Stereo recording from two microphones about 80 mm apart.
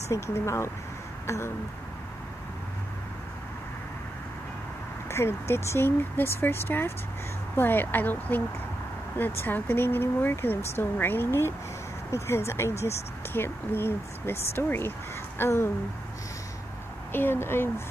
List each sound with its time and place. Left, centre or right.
0.1 s speech: left
5.1 s speech: left
17.1 s speech: left